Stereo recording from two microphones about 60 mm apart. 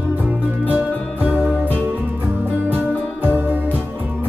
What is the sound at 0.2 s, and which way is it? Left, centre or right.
Music, right.